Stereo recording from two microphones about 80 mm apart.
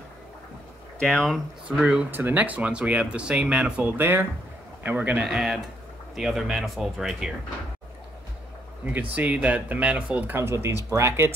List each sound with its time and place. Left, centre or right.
0.9 s speech: centre
1.8 s speech: centre
2.0 s speech: right
5.2 s speech: centre
8.9 s speech: centre
10.4 s speech: right